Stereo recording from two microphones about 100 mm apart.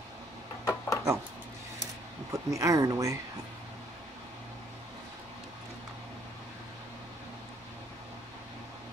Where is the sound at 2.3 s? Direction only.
30° right (ahead or behind).